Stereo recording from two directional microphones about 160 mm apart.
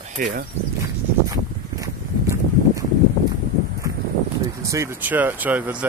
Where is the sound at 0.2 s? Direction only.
55° right (ahead or behind).